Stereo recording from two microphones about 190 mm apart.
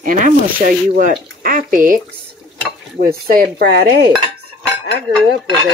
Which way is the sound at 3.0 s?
50° right (ahead or behind).